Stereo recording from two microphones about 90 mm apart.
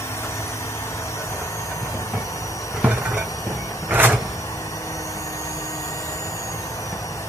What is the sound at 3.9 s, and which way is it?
Vehicle, 20° right (ahead or behind).